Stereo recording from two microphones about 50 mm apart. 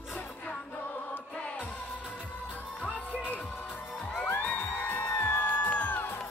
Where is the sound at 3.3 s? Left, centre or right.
Left.